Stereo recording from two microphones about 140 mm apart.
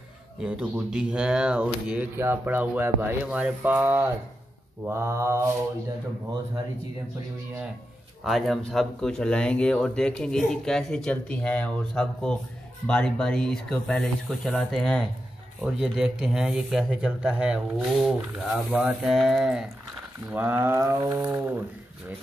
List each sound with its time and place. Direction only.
0.4 s speech: 10° right (ahead or behind)
4.8 s mantra: 20° right (ahead or behind)
8.2 s speech: centre (ahead or behind)